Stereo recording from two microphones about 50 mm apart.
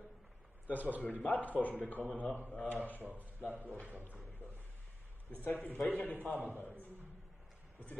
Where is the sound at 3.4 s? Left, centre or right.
Right.